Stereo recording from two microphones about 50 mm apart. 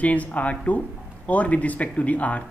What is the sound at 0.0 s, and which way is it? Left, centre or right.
Speech, left.